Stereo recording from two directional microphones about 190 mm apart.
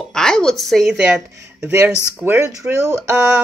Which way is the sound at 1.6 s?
10° right (ahead or behind).